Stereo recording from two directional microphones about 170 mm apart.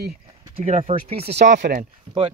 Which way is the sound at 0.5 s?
35° right (ahead or behind).